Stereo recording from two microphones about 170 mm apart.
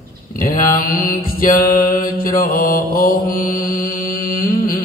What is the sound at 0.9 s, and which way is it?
Mantra, 55° left (ahead or behind).